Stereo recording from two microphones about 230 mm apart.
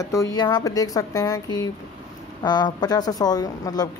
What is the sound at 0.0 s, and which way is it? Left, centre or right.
Speech, centre.